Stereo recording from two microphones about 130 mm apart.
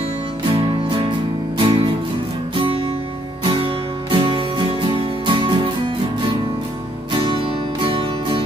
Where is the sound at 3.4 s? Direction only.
40° right (ahead or behind).